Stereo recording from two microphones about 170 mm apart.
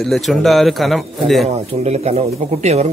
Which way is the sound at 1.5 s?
40° right (ahead or behind).